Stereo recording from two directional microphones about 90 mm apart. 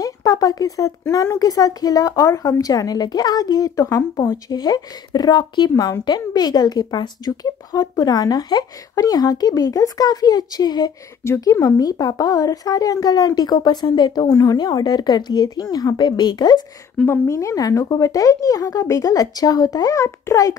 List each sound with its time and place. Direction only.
0.0 s speech: 40° left (ahead or behind)
4.5 s a woman's voice: 45° left (ahead or behind)
11.2 s a woman's voice: 30° left (ahead or behind); by 16.6 s 50° left (ahead or behind)
17.0 s speech: 25° left (ahead or behind)